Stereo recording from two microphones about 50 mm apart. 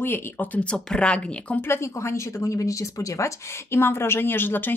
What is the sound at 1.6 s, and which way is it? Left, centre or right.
Speech, left.